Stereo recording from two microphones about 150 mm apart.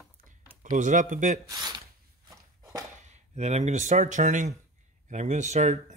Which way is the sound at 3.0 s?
50° right (ahead or behind).